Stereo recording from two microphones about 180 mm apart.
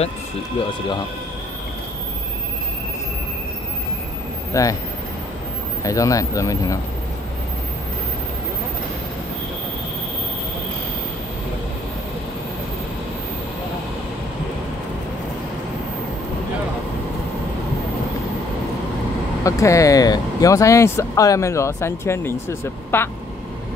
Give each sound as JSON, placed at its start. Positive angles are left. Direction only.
{"t": 4.5, "sound": "speech", "side_deg": 15}
{"t": 5.9, "sound": "speech", "side_deg": 20}
{"t": 19.4, "sound": "speech", "side_deg": 15}